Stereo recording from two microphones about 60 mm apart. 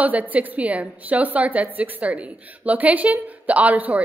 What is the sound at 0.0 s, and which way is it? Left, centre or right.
A woman's voice, right.